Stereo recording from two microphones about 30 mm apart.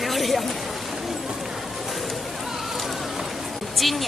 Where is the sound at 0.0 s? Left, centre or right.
Centre.